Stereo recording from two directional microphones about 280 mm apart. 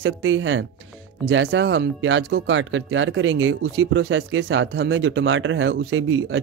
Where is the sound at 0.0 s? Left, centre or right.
Right.